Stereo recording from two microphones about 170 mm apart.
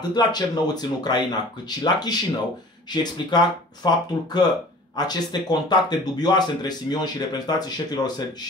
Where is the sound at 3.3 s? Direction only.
25° left (ahead or behind).